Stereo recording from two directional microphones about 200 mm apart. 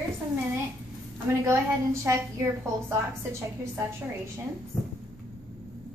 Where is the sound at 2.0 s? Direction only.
15° right (ahead or behind).